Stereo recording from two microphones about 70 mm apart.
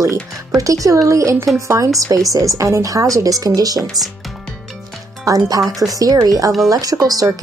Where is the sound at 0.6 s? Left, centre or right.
Right.